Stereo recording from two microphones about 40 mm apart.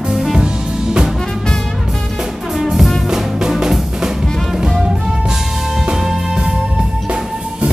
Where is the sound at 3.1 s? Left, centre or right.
Centre.